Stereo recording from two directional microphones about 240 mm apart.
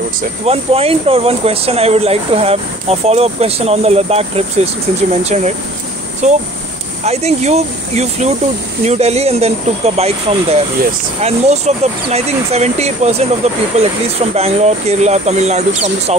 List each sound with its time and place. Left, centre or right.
0.5 s speech: right